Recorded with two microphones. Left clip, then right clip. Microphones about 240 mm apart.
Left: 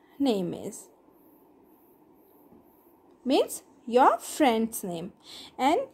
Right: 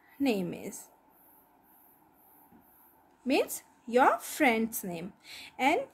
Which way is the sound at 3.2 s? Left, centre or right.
Centre.